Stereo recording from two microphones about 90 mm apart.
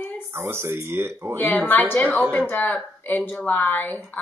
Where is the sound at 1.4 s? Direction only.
20° left (ahead or behind).